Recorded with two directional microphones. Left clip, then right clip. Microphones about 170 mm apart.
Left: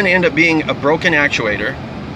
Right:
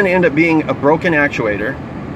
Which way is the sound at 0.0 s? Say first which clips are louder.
Even; 20° right (ahead or behind).